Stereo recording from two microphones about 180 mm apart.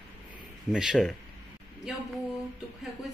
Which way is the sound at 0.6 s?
Centre (ahead or behind).